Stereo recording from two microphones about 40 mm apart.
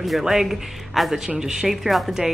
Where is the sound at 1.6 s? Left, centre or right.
Centre.